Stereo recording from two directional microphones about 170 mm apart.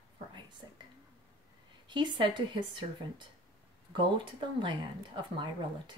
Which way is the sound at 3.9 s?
30° right (ahead or behind).